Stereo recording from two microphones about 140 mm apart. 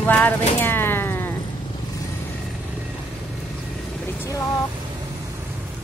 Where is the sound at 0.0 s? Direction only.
10° left (ahead or behind).